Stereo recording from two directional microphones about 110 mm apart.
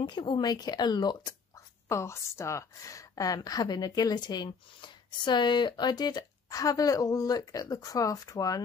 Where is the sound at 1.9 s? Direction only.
25° left (ahead or behind).